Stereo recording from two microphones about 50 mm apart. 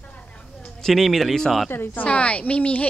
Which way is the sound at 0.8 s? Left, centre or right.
Centre.